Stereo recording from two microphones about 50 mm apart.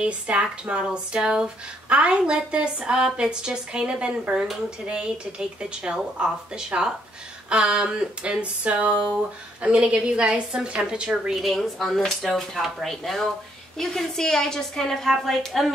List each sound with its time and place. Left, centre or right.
0.0 s speech: centre
11.4 s a woman's voice: centre